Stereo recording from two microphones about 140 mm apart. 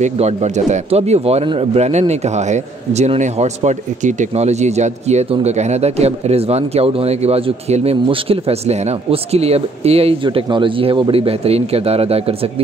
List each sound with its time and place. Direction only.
0.0 s speech: 55° right (ahead or behind)